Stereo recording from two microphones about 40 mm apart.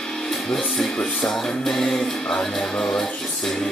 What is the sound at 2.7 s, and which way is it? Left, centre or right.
Speech, left.